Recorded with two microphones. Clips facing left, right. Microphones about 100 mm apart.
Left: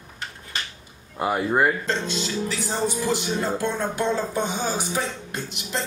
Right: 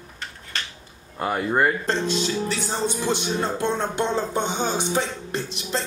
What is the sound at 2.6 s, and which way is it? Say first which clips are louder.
Speech: even; 25° right (ahead or behind).